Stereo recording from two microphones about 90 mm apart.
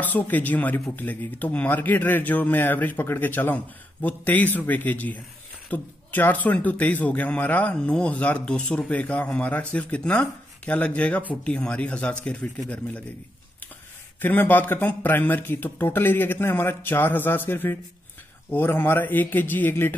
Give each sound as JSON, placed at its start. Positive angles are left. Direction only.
{"t": 0.0, "sound": "a man's voice", "side_deg": 20}
{"t": 14.2, "sound": "speech", "side_deg": 20}